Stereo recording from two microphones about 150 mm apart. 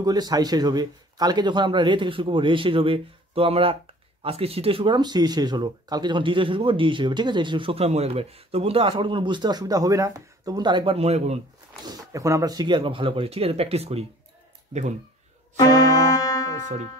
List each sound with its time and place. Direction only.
0.0 s speech: 25° right (ahead or behind); by 11.3 s 45° right (ahead or behind)
11.8 s speech: 25° right (ahead or behind); by 15.0 s 50° right (ahead or behind)
16.2 s music: 25° left (ahead or behind)